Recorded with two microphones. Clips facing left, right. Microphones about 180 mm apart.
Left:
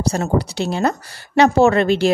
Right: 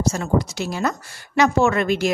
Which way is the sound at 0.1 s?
35° left (ahead or behind).